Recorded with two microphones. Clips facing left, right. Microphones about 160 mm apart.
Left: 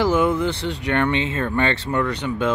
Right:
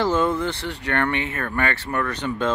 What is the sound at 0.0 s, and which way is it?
Speech, 10° left (ahead or behind).